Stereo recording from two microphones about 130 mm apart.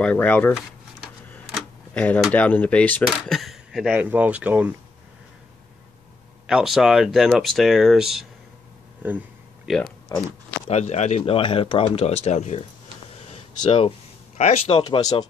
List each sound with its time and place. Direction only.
0.0 s speech: 10° left (ahead or behind)
2.0 s speech: 10° left (ahead or behind)
3.1 s speech: centre (ahead or behind)
6.4 s speech: 5° right (ahead or behind)
9.7 s speech: 5° right (ahead or behind)
10.0 s speech: 15° left (ahead or behind)
10.7 s speech: 60° left (ahead or behind)
11.2 s speech: 45° left (ahead or behind)
13.6 s speech: 40° left (ahead or behind)
14.3 s a man's voice: 55° left (ahead or behind)
14.7 s speech: 30° left (ahead or behind)